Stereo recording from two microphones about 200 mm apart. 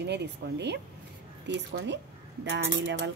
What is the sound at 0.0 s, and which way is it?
Speech, 60° right (ahead or behind).